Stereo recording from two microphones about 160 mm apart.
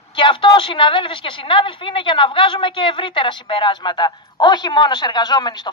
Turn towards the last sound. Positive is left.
turn(degrees=25)  # may be behind; listen again after turning